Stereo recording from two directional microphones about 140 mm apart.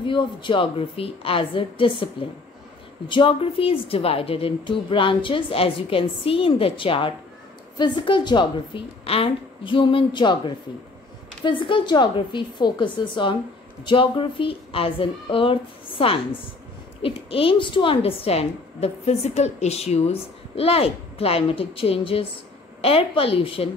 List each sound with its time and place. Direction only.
0.0 s a woman's voice: 35° left (ahead or behind)